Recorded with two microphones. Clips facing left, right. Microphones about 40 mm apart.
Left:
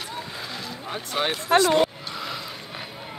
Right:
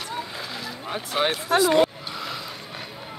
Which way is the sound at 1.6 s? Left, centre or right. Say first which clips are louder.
Right 1 dB; centre.